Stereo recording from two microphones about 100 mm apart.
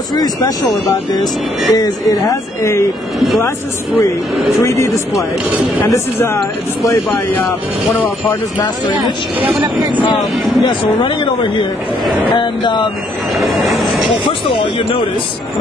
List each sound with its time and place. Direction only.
0.1 s speech: 45° left (ahead or behind)
1.7 s speech: 35° left (ahead or behind)
4.6 s speech: 35° left (ahead or behind)
10.7 s speech: 55° left (ahead or behind)
13.4 s a sound: centre (ahead or behind)